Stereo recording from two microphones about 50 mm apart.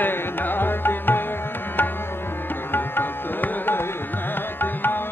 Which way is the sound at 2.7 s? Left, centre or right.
Left.